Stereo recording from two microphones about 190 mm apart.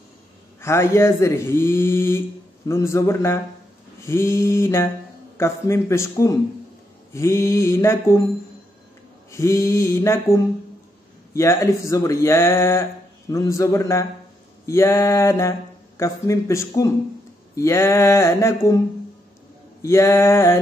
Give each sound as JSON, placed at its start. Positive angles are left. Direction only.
{"t": 0.6, "sound": "speech", "side_deg": 15}
{"t": 9.3, "sound": "speech", "side_deg": 15}
{"t": 19.8, "sound": "speech", "side_deg": 15}